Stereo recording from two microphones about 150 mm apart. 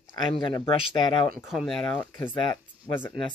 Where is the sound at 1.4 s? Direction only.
Centre (ahead or behind).